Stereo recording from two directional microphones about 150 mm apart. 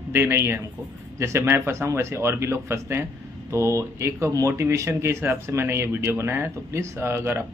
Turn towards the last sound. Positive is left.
turn(degrees=-15)  # may be behind; listen again after turning